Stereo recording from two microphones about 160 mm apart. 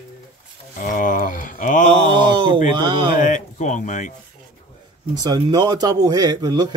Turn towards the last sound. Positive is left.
turn(degrees=-25)  # may be behind; listen again after turning